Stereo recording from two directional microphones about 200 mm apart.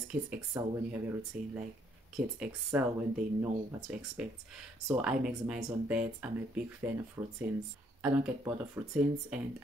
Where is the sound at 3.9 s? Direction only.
5° right (ahead or behind).